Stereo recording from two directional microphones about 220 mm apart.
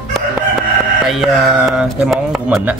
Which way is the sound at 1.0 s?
Centre (ahead or behind).